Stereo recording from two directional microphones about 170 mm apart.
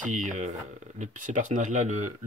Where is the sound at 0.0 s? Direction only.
45° right (ahead or behind).